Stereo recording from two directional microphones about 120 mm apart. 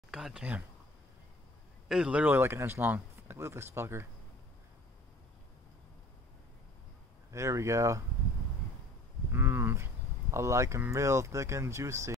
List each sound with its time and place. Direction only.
0.1 s speech: 5° right (ahead or behind)
1.9 s speech: 10° right (ahead or behind)
7.2 s speech: 25° right (ahead or behind)
9.3 s a sound: 20° right (ahead or behind)
10.3 s speech: 25° right (ahead or behind)